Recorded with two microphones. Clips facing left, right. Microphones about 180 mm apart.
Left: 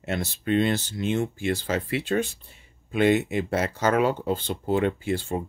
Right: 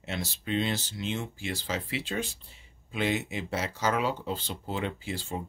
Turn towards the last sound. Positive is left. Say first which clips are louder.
# left 8 dB
turn(degrees=55)  # may be behind; listen again after turning